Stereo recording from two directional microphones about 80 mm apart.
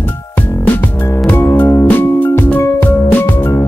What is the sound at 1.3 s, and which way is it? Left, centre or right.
Music, left.